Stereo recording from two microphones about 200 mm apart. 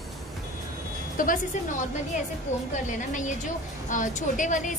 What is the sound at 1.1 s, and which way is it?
A woman's voice, 40° left (ahead or behind).